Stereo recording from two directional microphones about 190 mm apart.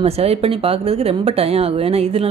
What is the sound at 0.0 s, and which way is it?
Speech, 30° right (ahead or behind).